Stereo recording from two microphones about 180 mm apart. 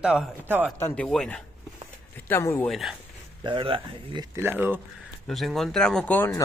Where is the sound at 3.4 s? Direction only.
30° right (ahead or behind).